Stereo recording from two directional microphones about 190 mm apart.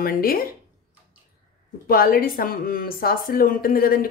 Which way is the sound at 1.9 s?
50° left (ahead or behind).